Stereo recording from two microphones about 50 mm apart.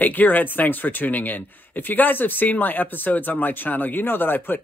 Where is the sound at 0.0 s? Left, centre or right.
Left.